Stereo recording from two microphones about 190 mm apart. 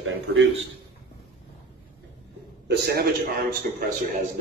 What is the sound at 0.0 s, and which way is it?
Speech, 90° right.